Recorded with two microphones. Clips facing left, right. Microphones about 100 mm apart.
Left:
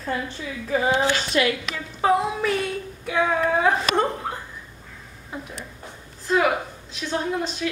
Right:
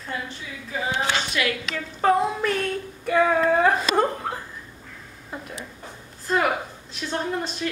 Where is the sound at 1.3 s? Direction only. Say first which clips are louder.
Left 4 dB; 30° left (ahead or behind).